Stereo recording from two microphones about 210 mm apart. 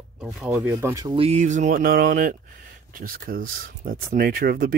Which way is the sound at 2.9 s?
45° right (ahead or behind).